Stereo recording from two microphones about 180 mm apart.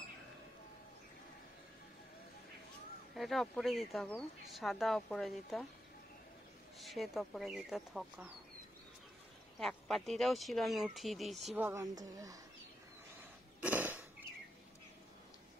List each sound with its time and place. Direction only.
3.2 s speech: centre (ahead or behind)
6.8 s speech: centre (ahead or behind)
9.6 s speech: centre (ahead or behind)
11.4 s a woman's voice: 10° right (ahead or behind)
13.6 s a sound: 10° right (ahead or behind)